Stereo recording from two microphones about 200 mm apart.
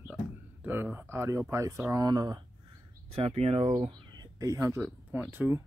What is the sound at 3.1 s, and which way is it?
Speech, 30° right (ahead or behind).